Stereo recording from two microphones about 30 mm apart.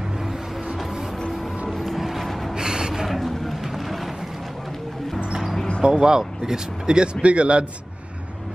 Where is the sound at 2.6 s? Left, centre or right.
Right.